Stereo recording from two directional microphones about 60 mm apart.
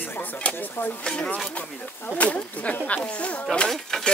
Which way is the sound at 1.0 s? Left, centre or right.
Centre.